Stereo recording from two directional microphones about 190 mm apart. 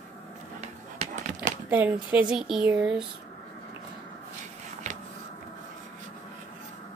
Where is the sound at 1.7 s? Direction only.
10° right (ahead or behind).